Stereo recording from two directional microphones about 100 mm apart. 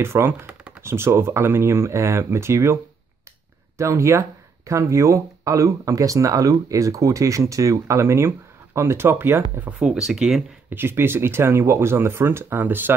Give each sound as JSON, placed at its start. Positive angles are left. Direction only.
{"t": 0.0, "sound": "speech", "side_deg": -25}
{"t": 9.8, "sound": "speech", "side_deg": -5}
{"t": 10.7, "sound": "speech", "side_deg": -20}